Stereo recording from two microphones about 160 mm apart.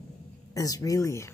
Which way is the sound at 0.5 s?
20° left (ahead or behind).